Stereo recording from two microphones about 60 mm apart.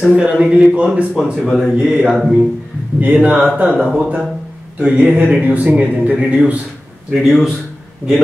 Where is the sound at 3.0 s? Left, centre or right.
Right.